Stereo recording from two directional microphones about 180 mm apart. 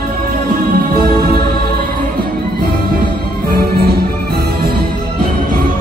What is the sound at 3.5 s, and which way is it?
Music, 60° right (ahead or behind).